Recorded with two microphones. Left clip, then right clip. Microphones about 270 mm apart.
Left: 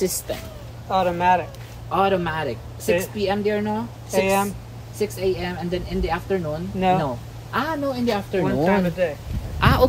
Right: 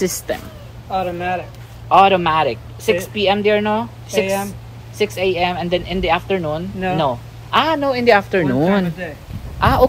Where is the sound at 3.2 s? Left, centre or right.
Right.